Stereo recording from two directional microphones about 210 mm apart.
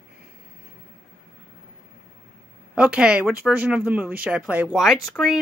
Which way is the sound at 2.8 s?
5° right (ahead or behind).